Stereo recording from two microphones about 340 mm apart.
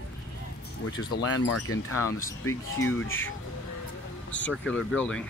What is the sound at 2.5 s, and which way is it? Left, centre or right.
Speech, centre.